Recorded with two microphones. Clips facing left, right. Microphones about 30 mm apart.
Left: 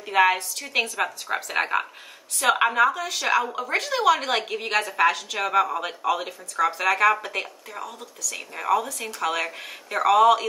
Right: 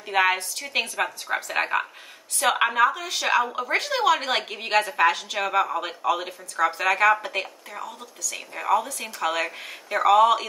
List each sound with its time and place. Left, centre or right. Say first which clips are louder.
0.0 s a woman's voice: left 2 dB; centre
3.1 s speech: even; right
3.3 s a woman's voice: right 3 dB; centre